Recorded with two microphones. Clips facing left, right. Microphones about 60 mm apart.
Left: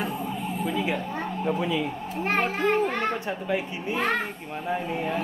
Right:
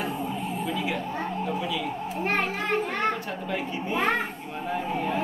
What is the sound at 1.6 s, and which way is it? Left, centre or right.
Speech, left.